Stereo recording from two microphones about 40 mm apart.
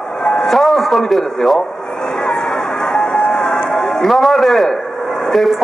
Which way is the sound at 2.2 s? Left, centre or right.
Centre.